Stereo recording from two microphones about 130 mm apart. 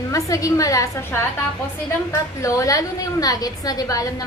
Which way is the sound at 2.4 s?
25° left (ahead or behind).